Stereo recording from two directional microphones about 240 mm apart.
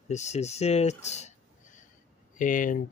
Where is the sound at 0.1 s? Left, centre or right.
Left.